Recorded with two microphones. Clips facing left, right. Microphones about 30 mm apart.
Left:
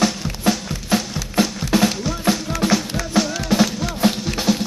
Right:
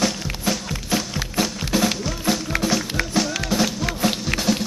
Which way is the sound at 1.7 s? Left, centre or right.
Left.